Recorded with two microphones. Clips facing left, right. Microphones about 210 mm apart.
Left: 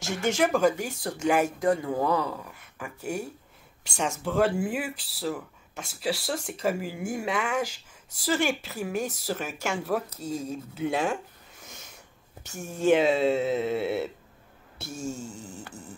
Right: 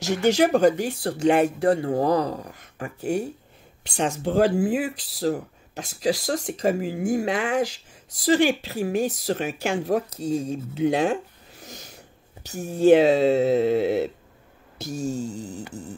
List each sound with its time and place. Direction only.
0.0 s speech: 35° right (ahead or behind)